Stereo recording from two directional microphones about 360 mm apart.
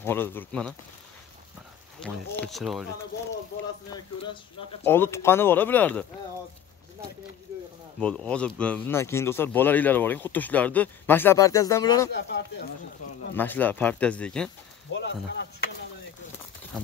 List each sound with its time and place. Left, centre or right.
0.0 s speech: centre
2.0 s speech: centre
3.9 s speech: centre
8.0 s speech: centre
12.1 s speech: left
13.4 s speech: centre
15.0 s speech: left